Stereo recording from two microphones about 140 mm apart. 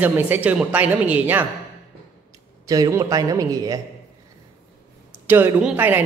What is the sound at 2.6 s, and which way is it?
A man's voice, 25° right (ahead or behind).